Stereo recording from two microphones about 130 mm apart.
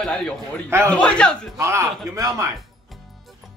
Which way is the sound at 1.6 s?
20° right (ahead or behind).